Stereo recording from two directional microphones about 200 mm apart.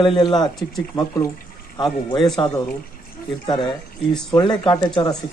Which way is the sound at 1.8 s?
20° left (ahead or behind).